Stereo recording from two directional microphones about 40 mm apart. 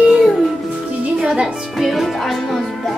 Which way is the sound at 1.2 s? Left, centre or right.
Right.